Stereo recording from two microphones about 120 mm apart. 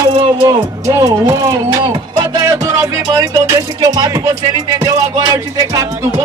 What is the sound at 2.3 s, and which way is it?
Music, 30° right (ahead or behind).